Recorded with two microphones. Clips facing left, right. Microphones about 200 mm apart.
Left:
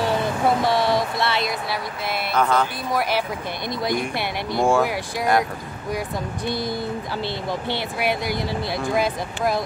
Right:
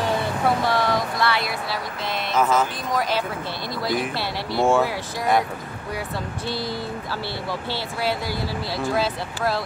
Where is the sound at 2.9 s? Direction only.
10° left (ahead or behind).